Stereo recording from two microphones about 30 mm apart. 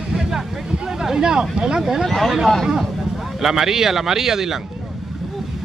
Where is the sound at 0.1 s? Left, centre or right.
Centre.